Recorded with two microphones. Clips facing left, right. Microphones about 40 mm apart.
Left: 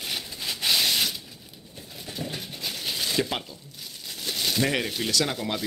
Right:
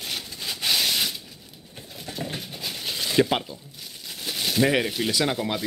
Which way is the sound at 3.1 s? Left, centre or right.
Centre.